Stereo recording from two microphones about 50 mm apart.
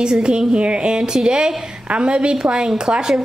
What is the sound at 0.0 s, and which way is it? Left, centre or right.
A woman's voice, centre.